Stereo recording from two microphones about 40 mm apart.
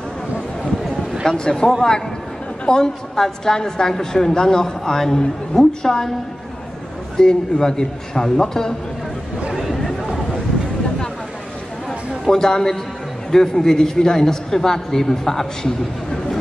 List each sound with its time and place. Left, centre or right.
1.2 s a woman's voice: centre
7.2 s a woman's voice: centre
12.3 s a woman's voice: centre